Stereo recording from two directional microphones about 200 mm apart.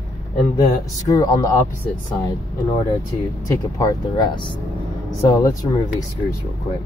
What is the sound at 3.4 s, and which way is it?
Speech, 15° left (ahead or behind).